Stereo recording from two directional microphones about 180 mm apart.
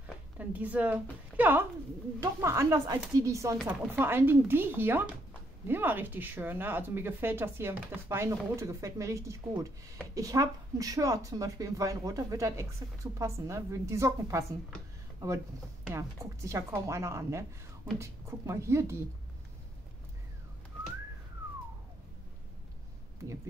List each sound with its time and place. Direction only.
0.4 s a woman's voice: 10° right (ahead or behind)